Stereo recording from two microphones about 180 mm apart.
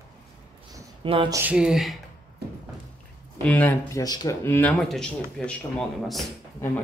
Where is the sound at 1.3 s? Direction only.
10° right (ahead or behind).